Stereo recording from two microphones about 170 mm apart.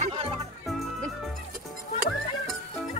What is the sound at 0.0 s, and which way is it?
Music, 35° right (ahead or behind).